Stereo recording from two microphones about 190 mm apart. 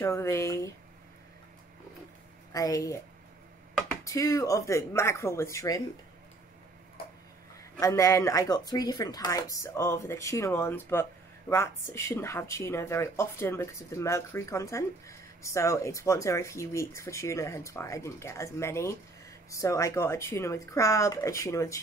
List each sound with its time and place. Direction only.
0.0 s speech: 15° left (ahead or behind)
2.5 s speech: 15° left (ahead or behind)
4.0 s speech: 15° left (ahead or behind)
7.8 s speech: 15° left (ahead or behind)